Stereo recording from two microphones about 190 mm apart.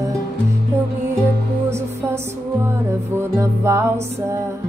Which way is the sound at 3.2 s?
15° right (ahead or behind).